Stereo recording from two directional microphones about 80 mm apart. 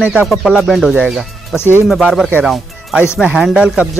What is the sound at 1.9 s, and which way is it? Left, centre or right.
Speech, centre.